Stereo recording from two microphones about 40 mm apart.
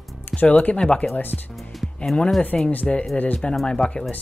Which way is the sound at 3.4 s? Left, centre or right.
Left.